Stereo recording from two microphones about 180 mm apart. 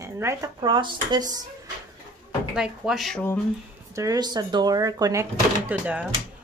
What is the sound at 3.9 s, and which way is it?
Speech, 20° right (ahead or behind).